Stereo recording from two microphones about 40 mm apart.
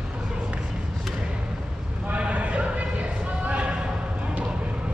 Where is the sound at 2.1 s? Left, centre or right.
Right.